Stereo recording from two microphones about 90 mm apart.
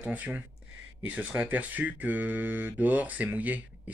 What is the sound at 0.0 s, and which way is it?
Speech, 15° right (ahead or behind).